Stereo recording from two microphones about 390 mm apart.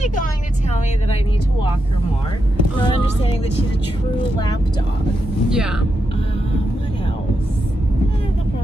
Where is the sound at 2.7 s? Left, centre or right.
Centre.